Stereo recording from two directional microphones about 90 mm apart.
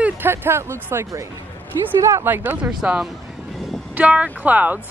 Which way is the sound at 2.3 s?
20° right (ahead or behind).